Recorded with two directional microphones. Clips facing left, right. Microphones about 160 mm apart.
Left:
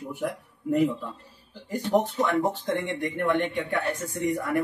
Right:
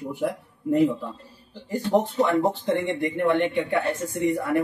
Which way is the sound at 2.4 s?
15° right (ahead or behind).